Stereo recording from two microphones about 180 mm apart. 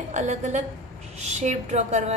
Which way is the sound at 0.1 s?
40° right (ahead or behind).